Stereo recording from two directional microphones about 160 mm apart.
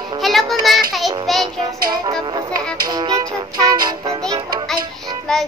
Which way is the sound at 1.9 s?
25° right (ahead or behind).